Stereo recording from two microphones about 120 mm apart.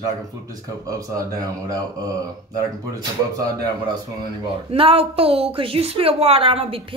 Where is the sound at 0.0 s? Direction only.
30° right (ahead or behind).